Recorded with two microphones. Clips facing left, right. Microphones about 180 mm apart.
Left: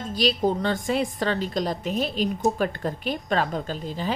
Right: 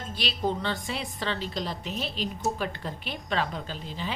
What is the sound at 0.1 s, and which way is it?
A woman's voice, 40° left (ahead or behind).